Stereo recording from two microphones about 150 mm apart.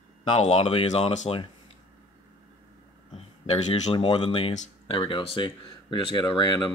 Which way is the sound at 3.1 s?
40° left (ahead or behind).